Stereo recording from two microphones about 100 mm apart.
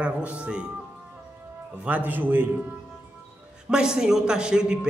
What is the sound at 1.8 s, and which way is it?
Speech, 15° right (ahead or behind).